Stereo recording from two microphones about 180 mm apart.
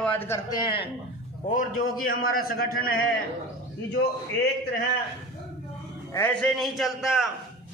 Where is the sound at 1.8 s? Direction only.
50° left (ahead or behind).